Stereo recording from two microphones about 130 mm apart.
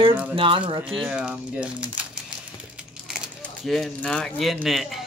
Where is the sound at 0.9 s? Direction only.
5° right (ahead or behind).